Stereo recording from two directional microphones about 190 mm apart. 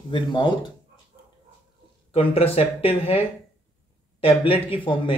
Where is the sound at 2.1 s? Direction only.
30° left (ahead or behind).